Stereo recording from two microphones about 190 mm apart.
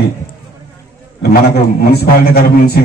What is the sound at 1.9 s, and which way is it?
Speech, 55° left (ahead or behind).